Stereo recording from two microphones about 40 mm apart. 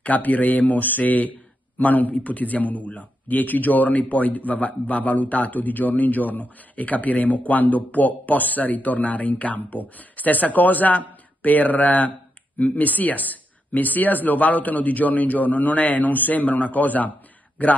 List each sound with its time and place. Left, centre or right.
0.0 s a man's voice: left